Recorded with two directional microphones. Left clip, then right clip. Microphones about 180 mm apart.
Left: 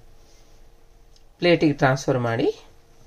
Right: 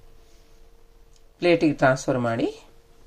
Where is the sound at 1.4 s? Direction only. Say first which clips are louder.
Left 1 dB; 25° right (ahead or behind).